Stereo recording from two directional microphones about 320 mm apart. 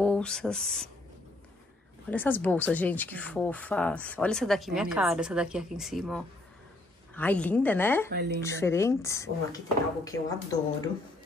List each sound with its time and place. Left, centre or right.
0.0 s speech: centre
2.0 s speech: centre
8.1 s speech: right
8.4 s speech: centre